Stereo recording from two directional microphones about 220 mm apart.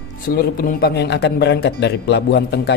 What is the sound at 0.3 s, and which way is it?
Speech, 40° left (ahead or behind).